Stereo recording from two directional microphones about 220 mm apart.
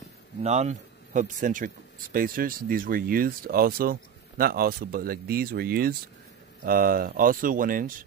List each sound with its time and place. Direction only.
0.4 s speech: 30° right (ahead or behind)